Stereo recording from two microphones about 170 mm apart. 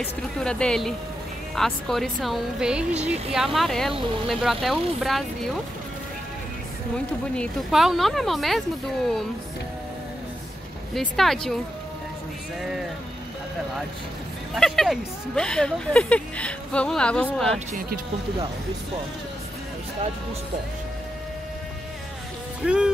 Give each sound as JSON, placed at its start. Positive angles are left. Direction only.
{"t": 0.0, "sound": "speech", "side_deg": 5}
{"t": 7.3, "sound": "speech", "side_deg": 0}
{"t": 11.0, "sound": "speech", "side_deg": 0}
{"t": 14.5, "sound": "speech", "side_deg": 0}
{"t": 17.7, "sound": "speech", "side_deg": -55}
{"t": 22.6, "sound": "speech", "side_deg": -5}